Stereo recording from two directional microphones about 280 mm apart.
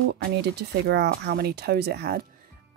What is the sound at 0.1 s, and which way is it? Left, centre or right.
Speech, right.